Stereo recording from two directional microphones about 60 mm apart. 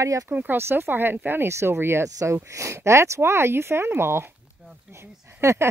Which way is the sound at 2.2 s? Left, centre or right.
Right.